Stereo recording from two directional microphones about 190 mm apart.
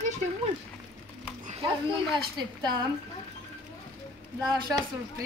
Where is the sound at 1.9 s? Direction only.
25° right (ahead or behind).